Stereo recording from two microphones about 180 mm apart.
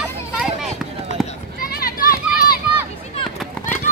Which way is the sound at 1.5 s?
55° left (ahead or behind).